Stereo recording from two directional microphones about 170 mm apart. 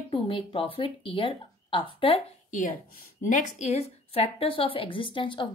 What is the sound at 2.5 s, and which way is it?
A woman's voice, 50° left (ahead or behind).